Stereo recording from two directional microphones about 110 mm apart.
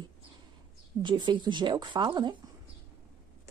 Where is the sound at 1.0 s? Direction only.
45° right (ahead or behind).